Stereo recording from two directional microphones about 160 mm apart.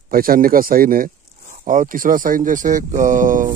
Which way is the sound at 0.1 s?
65° right (ahead or behind).